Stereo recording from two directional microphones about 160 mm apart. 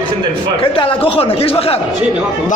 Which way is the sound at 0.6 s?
35° left (ahead or behind).